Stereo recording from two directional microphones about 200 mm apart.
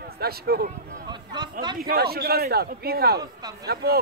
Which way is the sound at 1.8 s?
50° right (ahead or behind).